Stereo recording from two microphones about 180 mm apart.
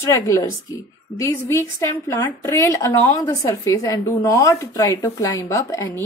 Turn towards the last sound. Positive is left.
turn(degrees=15)  # may be behind; listen again after turning